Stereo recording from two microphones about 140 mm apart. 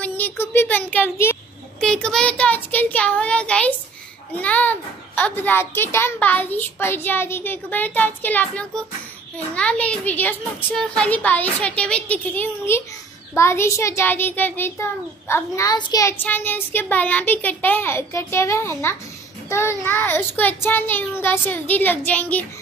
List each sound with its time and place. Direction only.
0.0 s a sound: 15° left (ahead or behind)
0.9 s speech: 15° left (ahead or behind)
1.8 s a child's voice: 5° left (ahead or behind)